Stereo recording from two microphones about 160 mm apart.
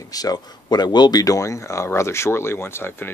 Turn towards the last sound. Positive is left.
turn(degrees=15)  # may be behind; listen again after turning